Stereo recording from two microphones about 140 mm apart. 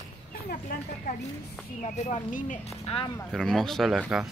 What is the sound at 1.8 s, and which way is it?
Speech, 55° left (ahead or behind).